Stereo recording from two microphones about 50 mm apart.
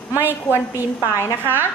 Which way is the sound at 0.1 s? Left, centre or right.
Right.